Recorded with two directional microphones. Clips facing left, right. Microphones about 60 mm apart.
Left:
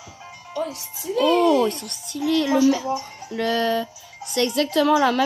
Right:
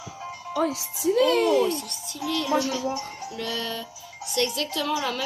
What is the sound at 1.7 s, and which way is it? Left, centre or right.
A woman's voice, left.